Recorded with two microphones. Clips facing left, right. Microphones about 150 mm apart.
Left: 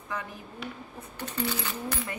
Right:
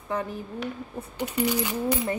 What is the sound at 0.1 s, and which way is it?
Speech, 30° right (ahead or behind).